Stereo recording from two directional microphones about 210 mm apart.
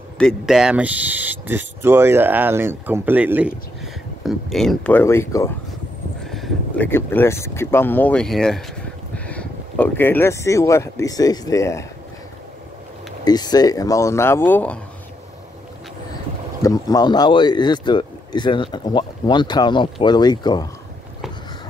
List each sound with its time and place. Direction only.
0.2 s speech: centre (ahead or behind)
6.3 s a sound: centre (ahead or behind)
6.9 s speech: 10° left (ahead or behind)
13.2 s speech: 20° left (ahead or behind)
16.6 s speech: 15° left (ahead or behind)